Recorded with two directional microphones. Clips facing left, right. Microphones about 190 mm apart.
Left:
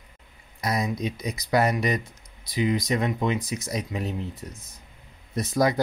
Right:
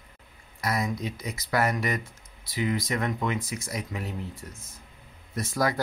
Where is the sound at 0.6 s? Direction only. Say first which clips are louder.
Left 2 dB; 20° left (ahead or behind).